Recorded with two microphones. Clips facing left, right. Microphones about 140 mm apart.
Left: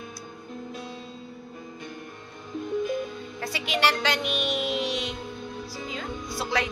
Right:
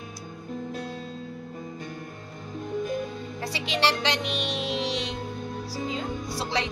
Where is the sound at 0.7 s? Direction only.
45° right (ahead or behind).